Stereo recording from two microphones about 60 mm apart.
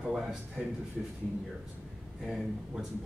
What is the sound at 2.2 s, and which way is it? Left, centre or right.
Speech, centre.